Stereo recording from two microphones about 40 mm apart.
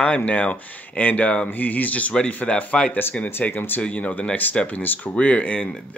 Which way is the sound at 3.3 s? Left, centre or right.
Left.